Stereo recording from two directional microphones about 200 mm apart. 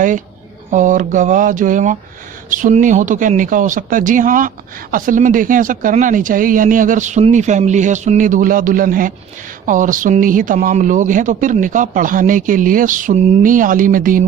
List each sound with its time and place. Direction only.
0.7 s speech: 40° right (ahead or behind)